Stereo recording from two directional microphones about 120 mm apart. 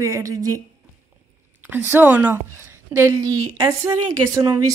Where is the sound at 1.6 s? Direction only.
15° right (ahead or behind).